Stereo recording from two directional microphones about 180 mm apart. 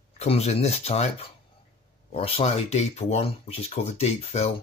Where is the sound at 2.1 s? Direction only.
30° left (ahead or behind).